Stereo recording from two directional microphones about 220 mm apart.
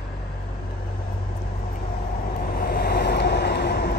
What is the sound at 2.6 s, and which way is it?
Vehicle, 45° left (ahead or behind).